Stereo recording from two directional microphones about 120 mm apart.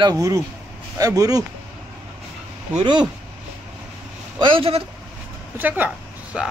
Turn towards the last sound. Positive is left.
turn(degrees=-5)  # may be behind; listen again after turning